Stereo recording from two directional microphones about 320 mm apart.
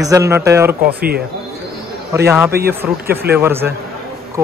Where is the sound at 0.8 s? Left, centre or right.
Right.